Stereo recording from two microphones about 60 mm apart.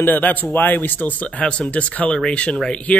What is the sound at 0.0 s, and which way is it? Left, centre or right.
Speech, left.